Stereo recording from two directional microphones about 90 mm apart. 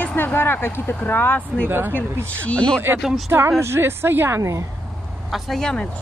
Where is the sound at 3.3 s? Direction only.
30° right (ahead or behind).